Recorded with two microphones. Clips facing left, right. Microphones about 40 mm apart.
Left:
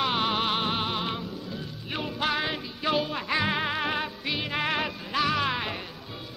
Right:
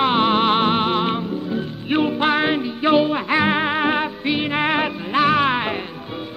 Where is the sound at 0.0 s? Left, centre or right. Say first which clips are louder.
Right 9 dB; right.